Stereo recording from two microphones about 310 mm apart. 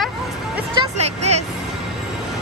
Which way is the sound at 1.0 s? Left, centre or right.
Right.